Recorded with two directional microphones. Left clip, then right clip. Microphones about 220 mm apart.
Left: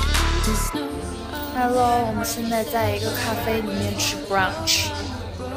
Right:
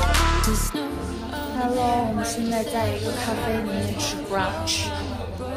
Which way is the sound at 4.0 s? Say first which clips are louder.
Left 5 dB; 5° left (ahead or behind).